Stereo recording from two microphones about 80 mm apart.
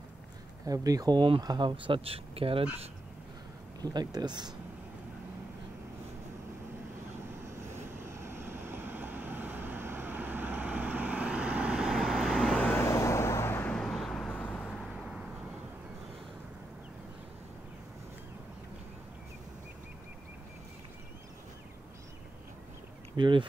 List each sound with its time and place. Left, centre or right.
0.7 s speech: right
1.4 s speech: right
3.8 s speech: right
7.4 s vehicle: right; by 12.5 s centre
12.5 s vehicle: centre
12.8 s vehicle: left
13.7 s vehicle: centre
23.1 s a sound: right